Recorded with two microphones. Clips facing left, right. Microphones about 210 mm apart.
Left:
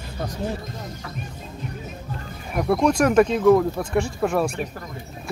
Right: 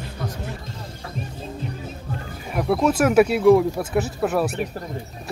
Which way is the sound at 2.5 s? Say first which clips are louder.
Even; 5° right (ahead or behind).